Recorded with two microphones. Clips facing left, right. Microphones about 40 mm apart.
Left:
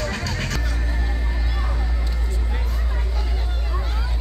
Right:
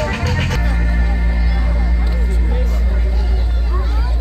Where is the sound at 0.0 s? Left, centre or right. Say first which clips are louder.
Right 6 dB; right.